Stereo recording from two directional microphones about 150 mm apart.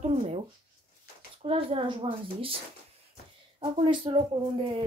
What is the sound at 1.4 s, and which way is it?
A child's voice, 35° right (ahead or behind).